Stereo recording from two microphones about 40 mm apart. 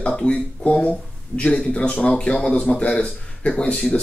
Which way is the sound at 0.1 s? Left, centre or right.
Left.